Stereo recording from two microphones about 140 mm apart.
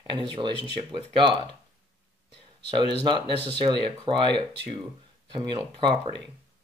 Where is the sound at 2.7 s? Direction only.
35° right (ahead or behind).